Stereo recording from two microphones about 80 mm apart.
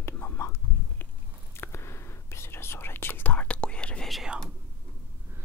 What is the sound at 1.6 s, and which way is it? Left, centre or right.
Whispering, left.